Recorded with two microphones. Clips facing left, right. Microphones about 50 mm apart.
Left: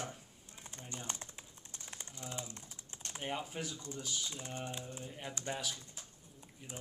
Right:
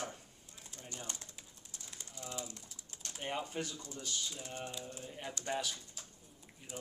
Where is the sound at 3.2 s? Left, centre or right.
Centre.